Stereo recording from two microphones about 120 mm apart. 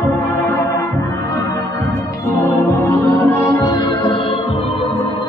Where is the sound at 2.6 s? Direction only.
20° left (ahead or behind); by 4.2 s 35° left (ahead or behind).